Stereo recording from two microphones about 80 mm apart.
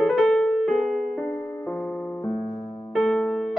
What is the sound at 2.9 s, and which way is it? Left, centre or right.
Music, centre.